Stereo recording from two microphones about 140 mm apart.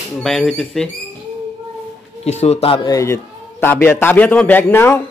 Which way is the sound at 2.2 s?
50° left (ahead or behind).